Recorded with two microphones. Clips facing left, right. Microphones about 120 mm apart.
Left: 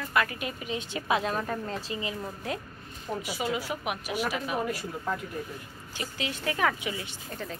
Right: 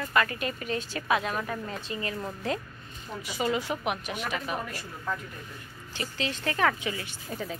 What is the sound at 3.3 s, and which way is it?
Speech, 5° left (ahead or behind).